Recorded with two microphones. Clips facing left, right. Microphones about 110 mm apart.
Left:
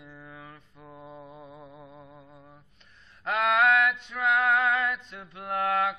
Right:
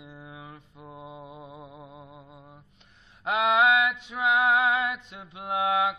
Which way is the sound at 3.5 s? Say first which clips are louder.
Even; 10° right (ahead or behind).